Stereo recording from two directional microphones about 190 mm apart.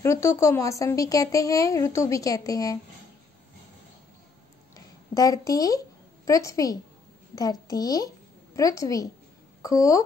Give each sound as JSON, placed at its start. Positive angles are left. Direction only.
{"t": 0.0, "sound": "speech", "side_deg": 15}
{"t": 4.7, "sound": "a woman's voice", "side_deg": 20}